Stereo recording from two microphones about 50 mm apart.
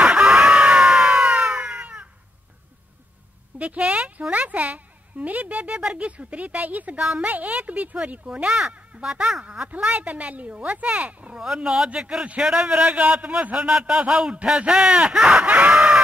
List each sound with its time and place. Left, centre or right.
0.1 s screaming: centre
3.5 s a sound: right
5.8 s speech: centre
9.8 s speech: right
11.1 s a sound: right
11.3 s a man's voice: centre